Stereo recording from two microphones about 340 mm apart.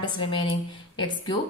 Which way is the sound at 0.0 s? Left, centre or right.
Centre.